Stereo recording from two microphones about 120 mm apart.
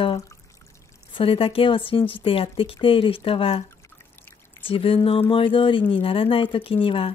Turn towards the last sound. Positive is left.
turn(degrees=50)  # may be behind; listen again after turning